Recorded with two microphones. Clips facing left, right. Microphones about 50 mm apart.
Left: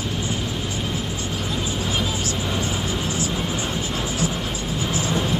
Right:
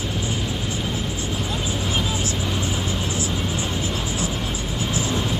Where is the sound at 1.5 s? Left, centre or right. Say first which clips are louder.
Left 1 dB; right.